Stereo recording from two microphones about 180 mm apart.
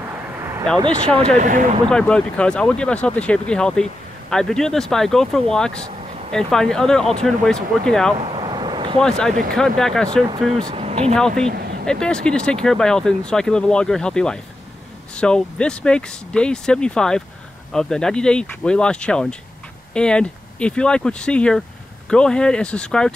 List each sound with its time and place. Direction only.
1.1 s speech: 35° right (ahead or behind)
1.9 s speech: 5° left (ahead or behind)
8.3 s vehicle: 25° right (ahead or behind)
9.0 s speech: 5° left (ahead or behind)
9.3 s speech: 50° right (ahead or behind)
9.6 s speech: 5° left (ahead or behind)
10.7 s speech: 35° right (ahead or behind)
11.1 s speech: 5° left (ahead or behind)